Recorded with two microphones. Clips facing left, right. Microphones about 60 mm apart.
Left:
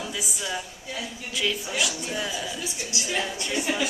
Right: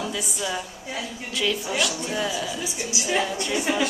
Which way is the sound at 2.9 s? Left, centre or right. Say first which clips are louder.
Right 5 dB; centre.